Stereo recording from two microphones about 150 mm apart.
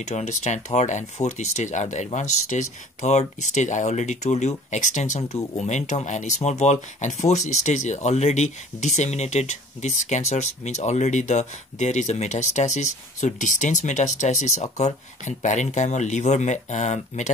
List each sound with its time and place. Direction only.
0.0 s speech: 50° left (ahead or behind)